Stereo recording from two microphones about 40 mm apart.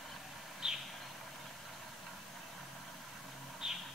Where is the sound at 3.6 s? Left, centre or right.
Centre.